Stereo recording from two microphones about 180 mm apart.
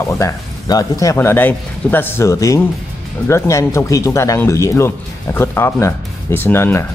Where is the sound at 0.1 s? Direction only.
15° left (ahead or behind).